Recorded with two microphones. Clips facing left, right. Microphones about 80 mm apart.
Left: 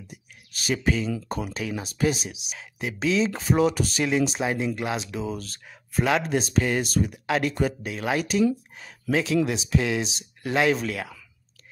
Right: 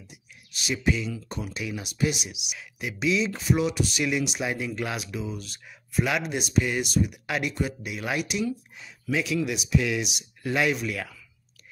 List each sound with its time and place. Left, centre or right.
0.1 s speech: left
5.2 s speech: left